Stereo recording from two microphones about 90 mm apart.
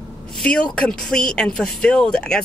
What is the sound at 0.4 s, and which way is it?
A woman's voice, 10° left (ahead or behind).